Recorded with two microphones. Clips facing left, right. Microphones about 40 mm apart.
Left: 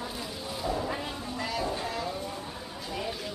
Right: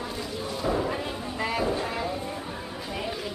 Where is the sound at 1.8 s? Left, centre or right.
Right.